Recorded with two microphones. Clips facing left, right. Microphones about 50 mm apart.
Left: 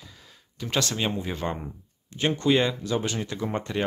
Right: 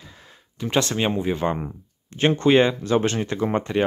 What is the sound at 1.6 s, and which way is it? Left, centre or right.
Speech, right.